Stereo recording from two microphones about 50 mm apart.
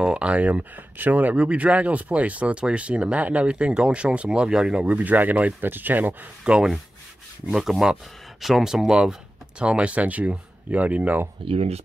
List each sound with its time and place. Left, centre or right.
0.0 s speech: right
1.3 s speech: right
4.9 s speech: right
6.4 s speech: centre
7.4 s speech: centre; by 11.2 s right